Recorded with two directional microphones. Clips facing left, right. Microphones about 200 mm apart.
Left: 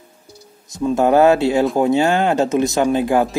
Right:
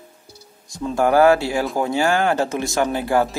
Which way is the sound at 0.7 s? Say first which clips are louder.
Left 3 dB; 20° left (ahead or behind).